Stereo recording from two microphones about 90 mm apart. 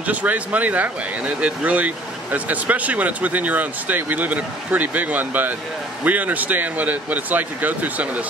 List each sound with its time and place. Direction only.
0.0 s speech: 15° right (ahead or behind)